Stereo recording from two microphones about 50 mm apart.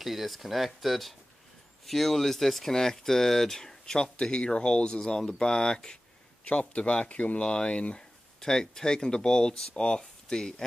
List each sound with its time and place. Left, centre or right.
0.0 s speech: centre
6.4 s speech: left
8.4 s speech: centre